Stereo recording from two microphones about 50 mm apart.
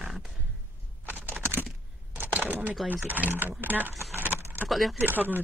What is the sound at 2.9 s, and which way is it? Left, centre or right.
Speech, right.